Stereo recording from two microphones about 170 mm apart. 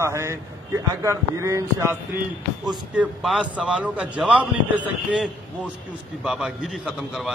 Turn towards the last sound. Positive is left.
turn(degrees=0)  # may be behind; listen again after turning